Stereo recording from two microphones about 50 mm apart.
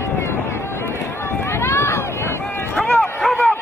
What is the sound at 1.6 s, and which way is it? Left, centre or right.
Run, left.